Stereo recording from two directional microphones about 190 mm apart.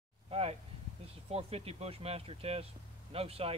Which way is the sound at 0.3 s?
30° right (ahead or behind).